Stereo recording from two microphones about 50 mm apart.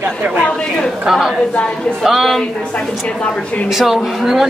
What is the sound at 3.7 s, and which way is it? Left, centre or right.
Speech, centre.